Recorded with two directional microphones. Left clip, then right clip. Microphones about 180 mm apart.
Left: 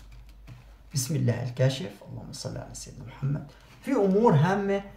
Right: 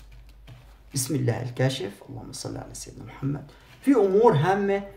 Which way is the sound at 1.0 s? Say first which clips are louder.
Right 4 dB; 40° right (ahead or behind).